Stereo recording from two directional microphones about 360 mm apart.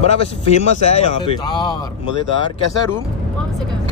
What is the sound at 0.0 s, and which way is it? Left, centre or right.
Speech, centre.